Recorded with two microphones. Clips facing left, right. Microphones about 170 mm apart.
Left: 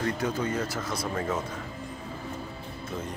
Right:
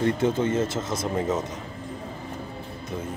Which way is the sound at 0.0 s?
25° right (ahead or behind).